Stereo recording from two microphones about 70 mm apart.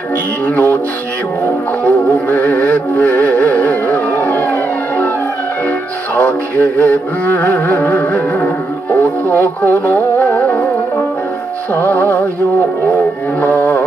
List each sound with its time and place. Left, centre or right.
0.5 s music: left
1.9 s music: left
6.1 s music: left
11.7 s music: left
13.4 s music: left